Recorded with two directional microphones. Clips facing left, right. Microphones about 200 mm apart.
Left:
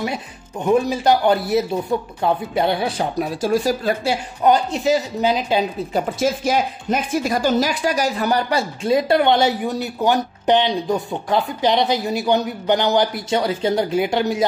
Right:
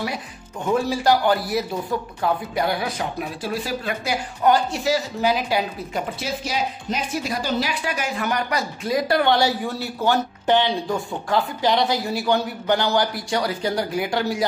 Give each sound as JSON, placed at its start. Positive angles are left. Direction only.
{"t": 0.7, "sound": "speech", "side_deg": 20}
{"t": 4.0, "sound": "speech", "side_deg": 25}
{"t": 5.9, "sound": "speech", "side_deg": 45}